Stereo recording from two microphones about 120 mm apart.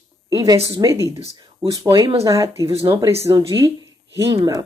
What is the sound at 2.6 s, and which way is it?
Speech, 45° right (ahead or behind).